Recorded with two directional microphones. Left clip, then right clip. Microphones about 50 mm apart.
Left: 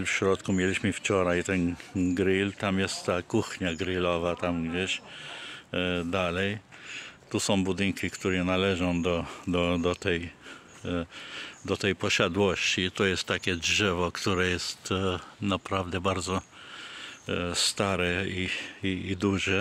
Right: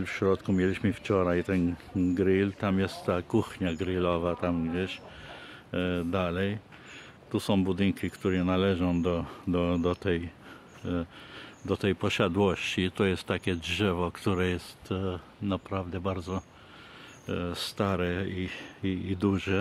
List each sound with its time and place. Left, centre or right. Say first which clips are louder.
0.0 s speech: left 2 dB; left
1.6 s speech: even; centre
3.3 s speech: even; centre
4.3 s speech: left 1 dB; left; by 12.8 s right
12.8 s speech: left 2 dB; centre
14.3 s speech: left 3 dB; left
15.4 s speech: left 3 dB; left
17.3 s speech: left 6 dB; left
18.8 s speech: left 1 dB; centre